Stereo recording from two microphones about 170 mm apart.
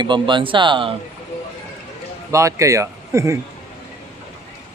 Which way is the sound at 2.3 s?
15° right (ahead or behind).